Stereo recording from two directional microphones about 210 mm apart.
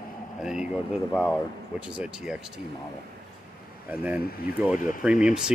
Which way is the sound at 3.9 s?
5° right (ahead or behind).